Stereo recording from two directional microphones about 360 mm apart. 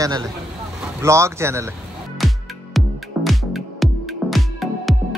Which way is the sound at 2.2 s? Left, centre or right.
Centre.